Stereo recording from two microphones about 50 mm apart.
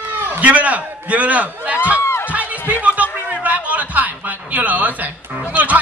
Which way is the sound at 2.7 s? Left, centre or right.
Right.